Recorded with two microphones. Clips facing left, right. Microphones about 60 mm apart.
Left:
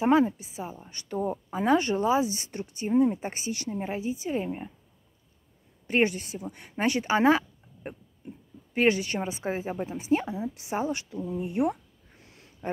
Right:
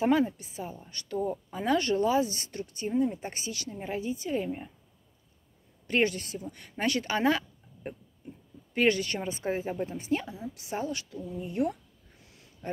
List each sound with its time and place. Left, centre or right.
0.0 s a woman's voice: centre
1.1 s speech: left
1.6 s speech: centre
5.9 s a woman's voice: centre
10.2 s speech: left
12.2 s a sound: left